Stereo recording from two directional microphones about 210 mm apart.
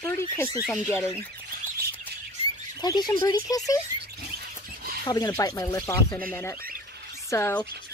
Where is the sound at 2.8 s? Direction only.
20° left (ahead or behind).